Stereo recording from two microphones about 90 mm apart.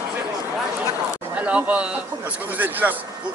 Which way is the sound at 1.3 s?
15° right (ahead or behind).